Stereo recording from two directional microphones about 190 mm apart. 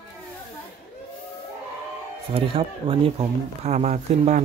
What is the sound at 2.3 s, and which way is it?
Speech, 30° right (ahead or behind).